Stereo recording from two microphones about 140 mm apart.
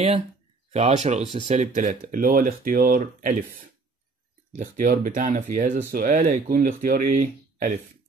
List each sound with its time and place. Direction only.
0.7 s speech: 50° right (ahead or behind); by 5.8 s 75° right (ahead or behind)
5.9 s speech: 90° right; by 7.8 s 75° right (ahead or behind)